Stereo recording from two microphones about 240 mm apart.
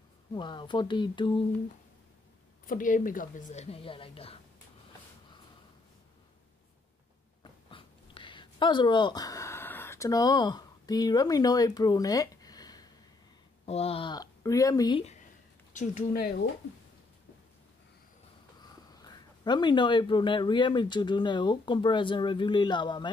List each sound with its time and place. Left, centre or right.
0.3 s a woman's voice: centre
2.6 s a woman's voice: left
7.7 s a sound: left
13.7 s speech: left
18.6 s speech: centre